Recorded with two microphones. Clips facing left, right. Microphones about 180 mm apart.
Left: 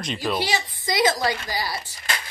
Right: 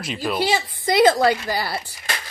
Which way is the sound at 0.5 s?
60° right (ahead or behind).